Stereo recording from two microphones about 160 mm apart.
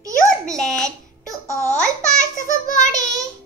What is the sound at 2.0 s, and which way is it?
Speech, 50° left (ahead or behind).